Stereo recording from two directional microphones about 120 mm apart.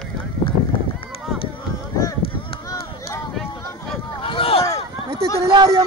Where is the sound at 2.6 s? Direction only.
25° left (ahead or behind).